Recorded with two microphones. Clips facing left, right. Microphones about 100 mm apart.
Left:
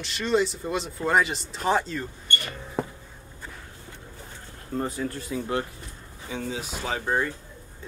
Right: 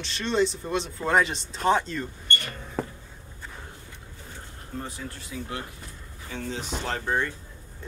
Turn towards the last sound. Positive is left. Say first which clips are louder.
# left 1 dB
turn(degrees=5)  # may be behind; listen again after turning